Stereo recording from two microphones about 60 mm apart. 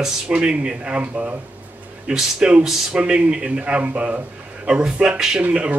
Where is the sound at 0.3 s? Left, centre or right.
Centre.